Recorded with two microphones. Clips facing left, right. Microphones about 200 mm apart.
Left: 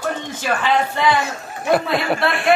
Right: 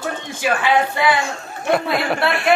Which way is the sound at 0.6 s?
10° right (ahead or behind).